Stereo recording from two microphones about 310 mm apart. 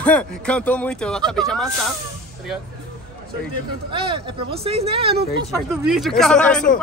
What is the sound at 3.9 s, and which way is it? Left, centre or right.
Speech, centre.